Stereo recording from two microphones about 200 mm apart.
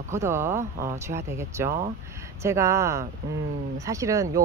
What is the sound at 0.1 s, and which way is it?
Speech, 15° right (ahead or behind).